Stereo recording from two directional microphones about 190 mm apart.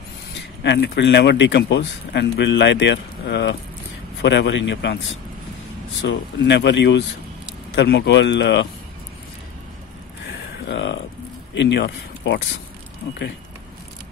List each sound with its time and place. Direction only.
0.7 s speech: 65° left (ahead or behind)
6.0 s speech: 70° left (ahead or behind)
10.7 s speech: 70° left (ahead or behind)